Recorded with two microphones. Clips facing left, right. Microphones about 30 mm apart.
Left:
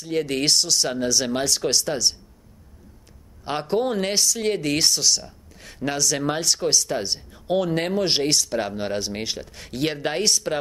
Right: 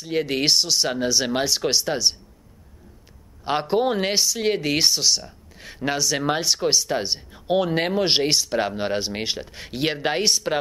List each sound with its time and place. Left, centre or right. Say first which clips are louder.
0.0 s speech: right 1 dB; centre
3.4 s speech: right 2 dB; centre